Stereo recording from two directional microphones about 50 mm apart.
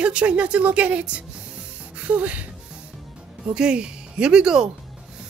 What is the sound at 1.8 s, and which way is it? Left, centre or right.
Music, right.